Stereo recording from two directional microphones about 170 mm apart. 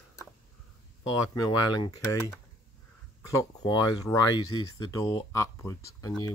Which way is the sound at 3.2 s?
20° left (ahead or behind).